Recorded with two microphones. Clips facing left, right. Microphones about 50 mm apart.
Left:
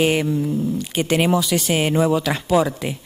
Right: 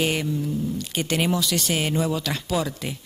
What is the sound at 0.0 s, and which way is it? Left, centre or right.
Speech, centre.